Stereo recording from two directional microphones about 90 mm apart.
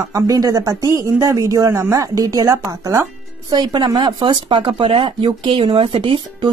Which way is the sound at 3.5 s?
55° right (ahead or behind).